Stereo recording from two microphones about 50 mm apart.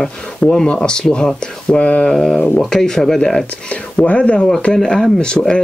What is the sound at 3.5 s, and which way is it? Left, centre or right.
Speech, left.